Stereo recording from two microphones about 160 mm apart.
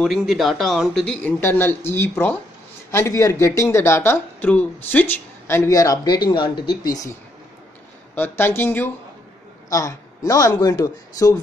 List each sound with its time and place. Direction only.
0.0 s speech: centre (ahead or behind)
1.4 s speech: 15° left (ahead or behind)